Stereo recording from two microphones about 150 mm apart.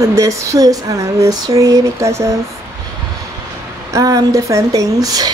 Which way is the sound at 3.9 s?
25° right (ahead or behind).